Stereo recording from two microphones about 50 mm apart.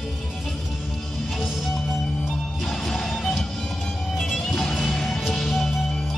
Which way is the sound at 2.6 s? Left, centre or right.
Centre.